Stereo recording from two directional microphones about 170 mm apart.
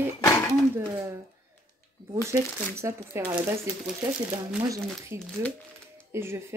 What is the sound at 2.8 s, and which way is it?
Speech, 15° right (ahead or behind).